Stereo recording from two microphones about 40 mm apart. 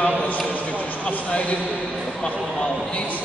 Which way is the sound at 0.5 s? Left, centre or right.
Left.